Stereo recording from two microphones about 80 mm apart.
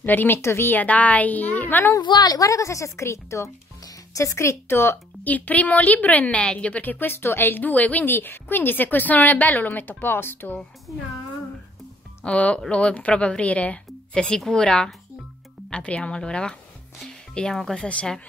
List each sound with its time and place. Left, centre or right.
0.0 s speech: left
2.0 s a woman's voice: left
12.3 s a woman's voice: centre